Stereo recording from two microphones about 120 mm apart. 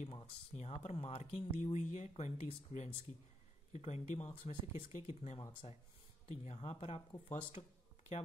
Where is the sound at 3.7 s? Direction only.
65° left (ahead or behind).